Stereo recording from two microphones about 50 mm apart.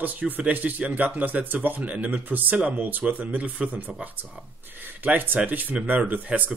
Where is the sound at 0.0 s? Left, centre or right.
Right.